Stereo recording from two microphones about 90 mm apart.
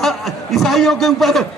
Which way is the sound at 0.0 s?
Centre (ahead or behind).